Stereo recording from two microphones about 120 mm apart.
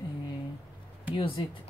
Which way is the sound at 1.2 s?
50° left (ahead or behind).